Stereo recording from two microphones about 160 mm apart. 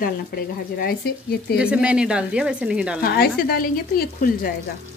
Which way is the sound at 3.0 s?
70° left (ahead or behind).